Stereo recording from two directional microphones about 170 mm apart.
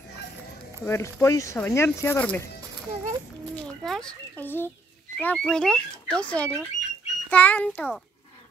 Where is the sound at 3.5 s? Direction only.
5° left (ahead or behind).